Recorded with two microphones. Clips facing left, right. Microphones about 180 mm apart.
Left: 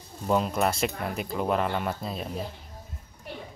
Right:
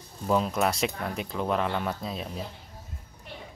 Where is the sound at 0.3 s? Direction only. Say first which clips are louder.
Even; centre (ahead or behind).